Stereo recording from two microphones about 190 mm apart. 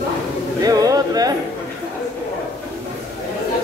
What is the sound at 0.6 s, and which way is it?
Speech, 20° right (ahead or behind).